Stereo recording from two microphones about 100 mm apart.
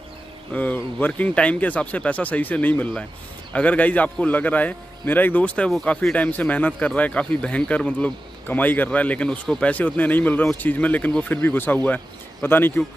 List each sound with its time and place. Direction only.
0.5 s speech: 15° left (ahead or behind)